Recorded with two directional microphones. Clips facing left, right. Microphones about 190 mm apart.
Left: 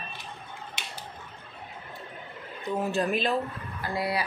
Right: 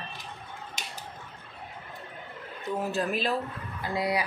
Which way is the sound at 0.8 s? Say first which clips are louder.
Even; 45° right (ahead or behind).